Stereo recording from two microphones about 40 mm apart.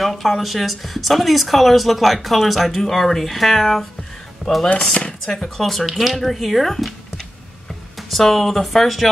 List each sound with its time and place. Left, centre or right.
0.0 s speech: centre
4.6 s speech: left
5.2 s speech: centre
8.1 s speech: centre